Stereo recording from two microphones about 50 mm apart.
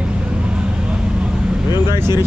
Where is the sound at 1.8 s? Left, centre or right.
Right.